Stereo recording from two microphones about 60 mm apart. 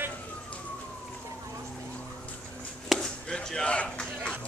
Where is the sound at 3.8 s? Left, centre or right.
Centre.